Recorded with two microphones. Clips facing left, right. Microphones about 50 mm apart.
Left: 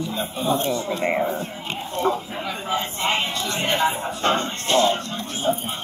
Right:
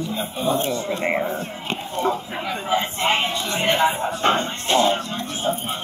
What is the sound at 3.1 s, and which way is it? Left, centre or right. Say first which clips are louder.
Music: right 2 dB; centre.